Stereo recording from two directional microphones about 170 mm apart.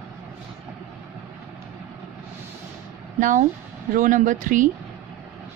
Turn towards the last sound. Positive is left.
turn(degrees=-50)  # may be behind; listen again after turning